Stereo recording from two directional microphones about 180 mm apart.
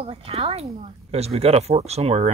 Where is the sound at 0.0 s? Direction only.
30° right (ahead or behind).